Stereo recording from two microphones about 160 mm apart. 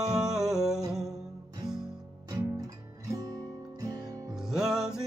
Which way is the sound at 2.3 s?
20° right (ahead or behind).